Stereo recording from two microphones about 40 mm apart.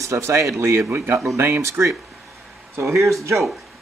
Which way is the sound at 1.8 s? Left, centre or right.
Right.